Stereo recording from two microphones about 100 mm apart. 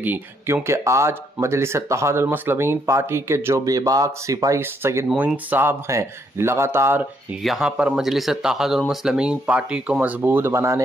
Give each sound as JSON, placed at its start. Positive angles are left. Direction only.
{"t": 0.0, "sound": "speech", "side_deg": -20}
{"t": 7.4, "sound": "speech", "side_deg": -5}